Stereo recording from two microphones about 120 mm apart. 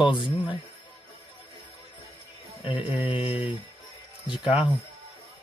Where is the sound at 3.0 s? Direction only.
50° left (ahead or behind).